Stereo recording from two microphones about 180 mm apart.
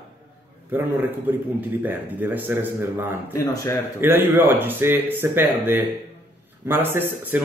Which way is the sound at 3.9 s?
10° right (ahead or behind).